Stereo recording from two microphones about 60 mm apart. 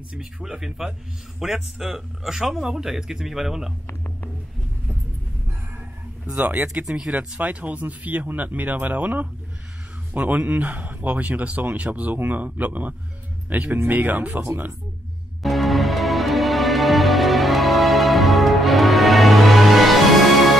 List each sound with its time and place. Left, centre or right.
0.1 s speech: centre
6.3 s a man's voice: right
7.3 s a man's voice: right
15.4 s music: centre